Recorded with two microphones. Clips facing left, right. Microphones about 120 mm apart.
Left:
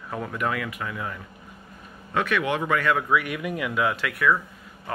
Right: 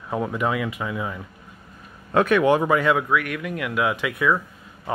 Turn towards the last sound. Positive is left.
turn(degrees=-15)  # may be behind; listen again after turning